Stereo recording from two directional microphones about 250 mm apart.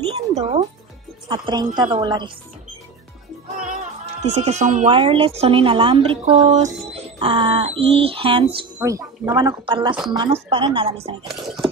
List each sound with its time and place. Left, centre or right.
0.1 s speech: right
3.6 s speech: right